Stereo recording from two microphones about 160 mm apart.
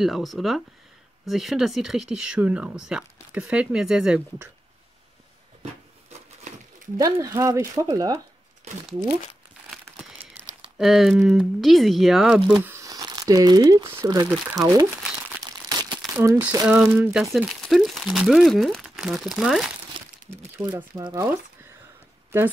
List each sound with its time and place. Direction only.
0.0 s speech: centre (ahead or behind)
7.0 s speech: 20° right (ahead or behind)
10.3 s speech: centre (ahead or behind)
12.5 s speech: 20° right (ahead or behind)
15.4 s crumpling: 25° right (ahead or behind)
16.2 s speech: 15° right (ahead or behind)
16.6 s speech: 5° right (ahead or behind)
20.2 s crumpling: 15° right (ahead or behind)
20.9 s speech: 25° right (ahead or behind)
21.2 s a sound: 10° right (ahead or behind)